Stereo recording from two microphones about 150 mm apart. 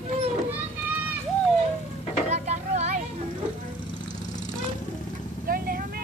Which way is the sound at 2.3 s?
45° right (ahead or behind).